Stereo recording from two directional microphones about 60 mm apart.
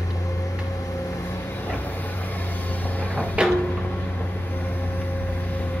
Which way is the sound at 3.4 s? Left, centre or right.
Centre.